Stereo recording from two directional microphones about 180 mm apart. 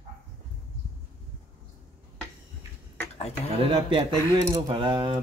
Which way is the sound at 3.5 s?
30° right (ahead or behind).